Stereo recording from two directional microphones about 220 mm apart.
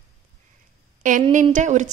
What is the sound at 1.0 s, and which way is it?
Speech, 35° right (ahead or behind).